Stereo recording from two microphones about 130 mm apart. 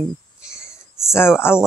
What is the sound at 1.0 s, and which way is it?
Speech, 20° left (ahead or behind).